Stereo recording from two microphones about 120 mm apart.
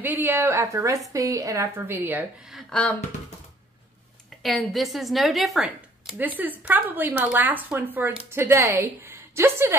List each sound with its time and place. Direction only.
0.0 s a woman's voice: 15° right (ahead or behind)
2.5 s a sound: 10° left (ahead or behind)
4.4 s a woman's voice: centre (ahead or behind)
6.1 s speech: 15° right (ahead or behind)